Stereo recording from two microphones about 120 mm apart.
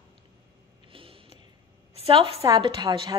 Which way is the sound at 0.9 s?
50° right (ahead or behind).